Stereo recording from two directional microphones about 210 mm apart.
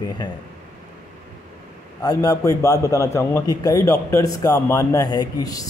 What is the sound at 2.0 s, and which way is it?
A man's voice, 15° left (ahead or behind).